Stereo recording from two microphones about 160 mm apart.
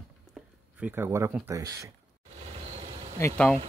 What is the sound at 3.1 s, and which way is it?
Speech, 10° left (ahead or behind).